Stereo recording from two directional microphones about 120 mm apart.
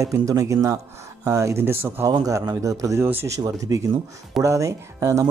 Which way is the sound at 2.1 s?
30° right (ahead or behind).